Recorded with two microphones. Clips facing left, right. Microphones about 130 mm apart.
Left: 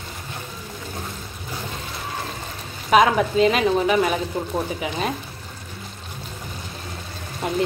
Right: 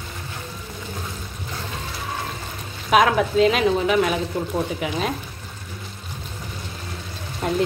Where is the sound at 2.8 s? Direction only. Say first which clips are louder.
Left 1 dB; centre (ahead or behind).